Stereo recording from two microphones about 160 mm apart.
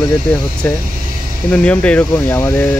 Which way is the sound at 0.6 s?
10° left (ahead or behind).